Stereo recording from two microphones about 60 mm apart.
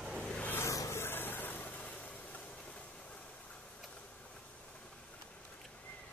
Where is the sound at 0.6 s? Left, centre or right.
Left; by 5.4 s centre.